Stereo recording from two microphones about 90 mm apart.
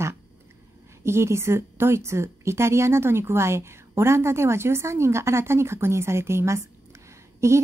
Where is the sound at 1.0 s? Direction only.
30° right (ahead or behind).